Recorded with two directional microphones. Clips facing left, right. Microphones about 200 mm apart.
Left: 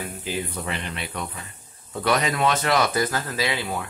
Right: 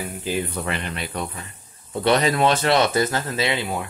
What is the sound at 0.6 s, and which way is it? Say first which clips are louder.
Speech: right 3 dB; 70° right (ahead or behind).